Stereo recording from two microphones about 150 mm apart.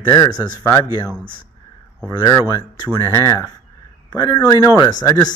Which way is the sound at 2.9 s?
25° left (ahead or behind).